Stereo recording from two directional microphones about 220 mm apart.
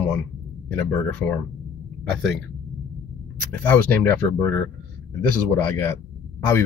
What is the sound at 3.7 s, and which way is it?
Speech, 10° left (ahead or behind).